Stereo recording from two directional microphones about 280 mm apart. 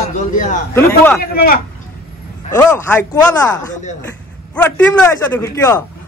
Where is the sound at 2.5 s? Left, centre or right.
Centre.